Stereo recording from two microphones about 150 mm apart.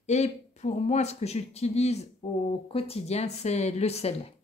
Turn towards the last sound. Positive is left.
turn(degrees=45)  # may be behind; listen again after turning